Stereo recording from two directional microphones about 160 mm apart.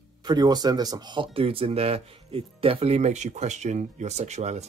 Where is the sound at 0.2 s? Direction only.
25° right (ahead or behind).